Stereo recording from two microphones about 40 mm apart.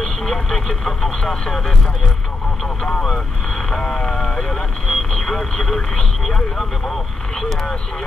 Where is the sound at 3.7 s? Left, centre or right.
Centre.